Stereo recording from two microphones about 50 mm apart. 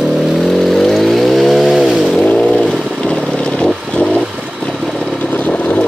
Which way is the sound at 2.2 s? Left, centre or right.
Centre.